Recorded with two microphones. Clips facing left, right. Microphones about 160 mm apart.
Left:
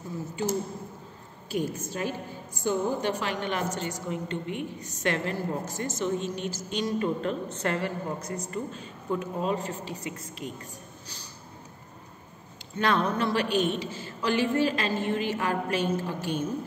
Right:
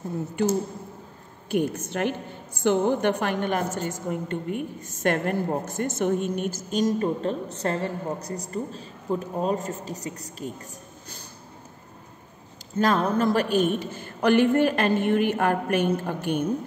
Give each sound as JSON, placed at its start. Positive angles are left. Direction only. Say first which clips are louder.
{"t": 1.5, "sound": "a woman's voice", "louder": "right 5 dB", "side_deg": -65}
{"t": 12.7, "sound": "a woman's voice", "louder": "right 4 dB", "side_deg": -40}